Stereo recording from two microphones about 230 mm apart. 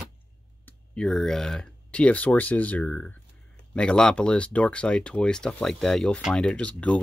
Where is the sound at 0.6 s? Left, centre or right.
Centre.